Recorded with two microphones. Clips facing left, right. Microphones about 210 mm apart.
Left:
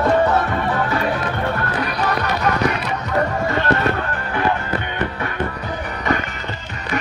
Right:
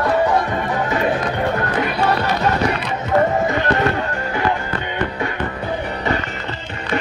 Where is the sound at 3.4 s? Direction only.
15° right (ahead or behind).